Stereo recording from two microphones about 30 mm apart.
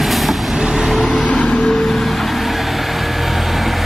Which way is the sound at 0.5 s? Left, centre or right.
Centre.